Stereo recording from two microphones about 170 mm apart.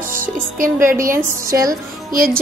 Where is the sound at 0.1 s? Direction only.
55° right (ahead or behind).